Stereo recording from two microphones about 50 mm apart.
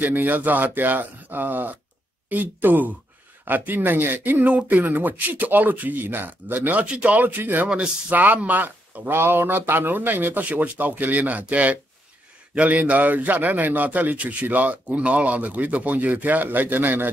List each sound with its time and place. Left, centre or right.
0.0 s a man's voice: right
7.6 s a man's voice: right
9.0 s a man's voice: right